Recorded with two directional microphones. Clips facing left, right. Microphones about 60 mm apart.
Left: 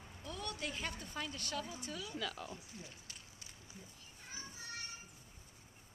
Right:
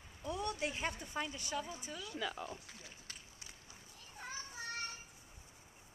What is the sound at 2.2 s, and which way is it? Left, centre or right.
Speech, centre.